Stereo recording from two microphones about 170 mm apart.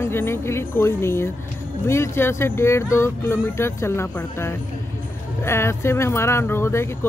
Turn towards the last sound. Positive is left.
turn(degrees=15)  # may be behind; listen again after turning